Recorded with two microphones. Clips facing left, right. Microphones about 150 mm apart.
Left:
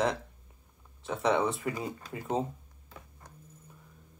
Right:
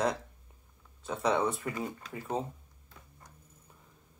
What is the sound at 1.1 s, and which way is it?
Speech, 5° left (ahead or behind).